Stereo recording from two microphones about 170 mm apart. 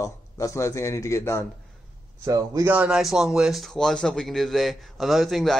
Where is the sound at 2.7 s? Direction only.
5° right (ahead or behind).